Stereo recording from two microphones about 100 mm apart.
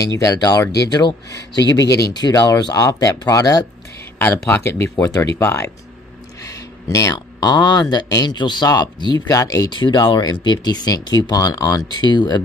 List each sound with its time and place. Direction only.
0.0 s speech: 35° left (ahead or behind)
4.2 s speech: 20° left (ahead or behind)
6.4 s a sound: 30° left (ahead or behind)
7.3 s speech: 45° left (ahead or behind)
9.7 s speech: 50° left (ahead or behind)